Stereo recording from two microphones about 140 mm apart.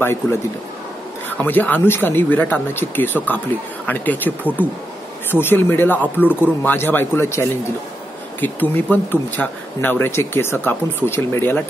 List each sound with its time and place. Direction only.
1.4 s speech: 10° left (ahead or behind)